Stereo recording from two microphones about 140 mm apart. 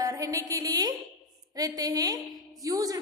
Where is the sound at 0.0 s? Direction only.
25° right (ahead or behind).